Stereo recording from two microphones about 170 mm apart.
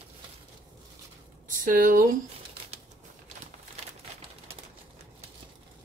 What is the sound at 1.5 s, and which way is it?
Speech, 50° right (ahead or behind).